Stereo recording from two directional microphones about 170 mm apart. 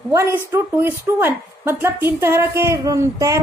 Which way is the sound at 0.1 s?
15° right (ahead or behind).